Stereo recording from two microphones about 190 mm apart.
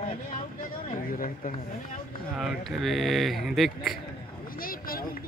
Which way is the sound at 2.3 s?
Centre (ahead or behind).